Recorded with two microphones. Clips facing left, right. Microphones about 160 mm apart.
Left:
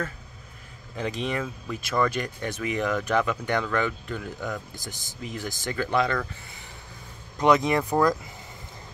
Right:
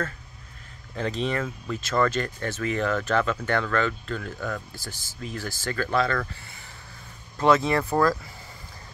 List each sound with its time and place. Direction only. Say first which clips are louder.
0.9 s speech: right 2 dB; 10° left (ahead or behind)
7.3 s speech: even; 15° left (ahead or behind)